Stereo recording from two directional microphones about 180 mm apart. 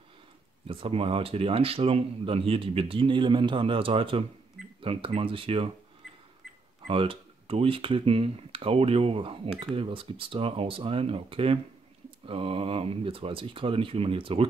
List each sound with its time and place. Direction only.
0.7 s speech: 30° right (ahead or behind)
6.9 s speech: 30° right (ahead or behind)